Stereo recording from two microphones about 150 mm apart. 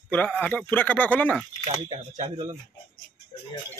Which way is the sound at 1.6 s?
45° right (ahead or behind).